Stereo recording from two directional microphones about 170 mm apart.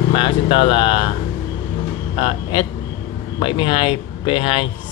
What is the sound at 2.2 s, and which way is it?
Speech, 35° left (ahead or behind).